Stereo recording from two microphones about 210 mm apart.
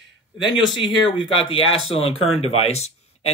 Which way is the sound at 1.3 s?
25° left (ahead or behind).